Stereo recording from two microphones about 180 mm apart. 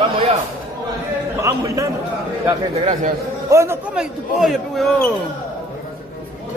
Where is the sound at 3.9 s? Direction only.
5° right (ahead or behind).